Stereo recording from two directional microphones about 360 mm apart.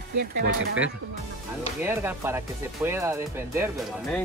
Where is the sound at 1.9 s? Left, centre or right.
Centre.